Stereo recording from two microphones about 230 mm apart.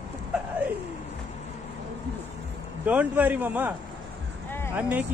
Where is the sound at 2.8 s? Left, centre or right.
Centre.